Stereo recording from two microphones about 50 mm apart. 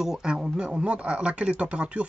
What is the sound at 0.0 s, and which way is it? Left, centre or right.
Speech, centre.